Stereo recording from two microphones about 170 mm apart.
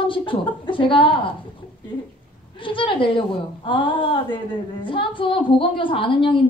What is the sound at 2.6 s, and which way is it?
A woman's voice, 30° left (ahead or behind).